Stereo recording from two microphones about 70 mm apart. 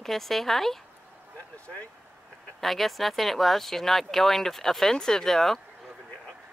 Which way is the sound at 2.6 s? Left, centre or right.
Centre.